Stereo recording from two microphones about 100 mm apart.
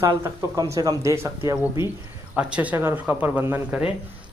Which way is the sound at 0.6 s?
40° right (ahead or behind).